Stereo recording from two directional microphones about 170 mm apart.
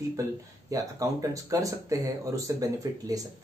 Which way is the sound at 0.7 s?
20° right (ahead or behind).